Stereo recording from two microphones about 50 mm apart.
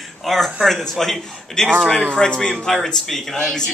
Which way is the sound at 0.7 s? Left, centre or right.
Centre.